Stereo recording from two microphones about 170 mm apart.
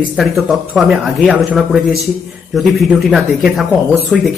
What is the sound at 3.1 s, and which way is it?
Speech, centre (ahead or behind).